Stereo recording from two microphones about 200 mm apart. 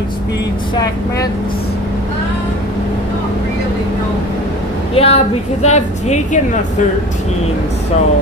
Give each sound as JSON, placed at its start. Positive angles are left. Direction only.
{"t": 4.9, "sound": "speech", "side_deg": 30}